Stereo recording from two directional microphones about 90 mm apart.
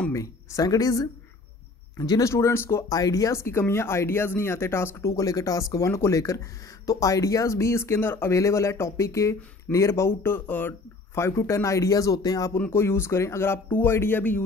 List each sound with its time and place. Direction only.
0.1 s speech: 35° left (ahead or behind)
2.9 s speech: 40° left (ahead or behind); by 10.7 s 20° left (ahead or behind)
11.1 s speech: 30° left (ahead or behind)
12.5 s speech: 25° left (ahead or behind)